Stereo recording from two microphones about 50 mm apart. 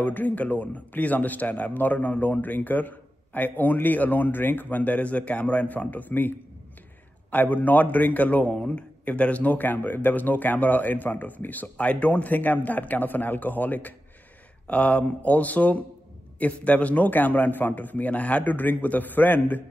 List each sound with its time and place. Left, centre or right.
0.0 s a man's voice: left